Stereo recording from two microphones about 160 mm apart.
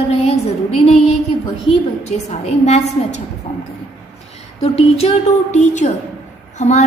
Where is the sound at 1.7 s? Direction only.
45° left (ahead or behind).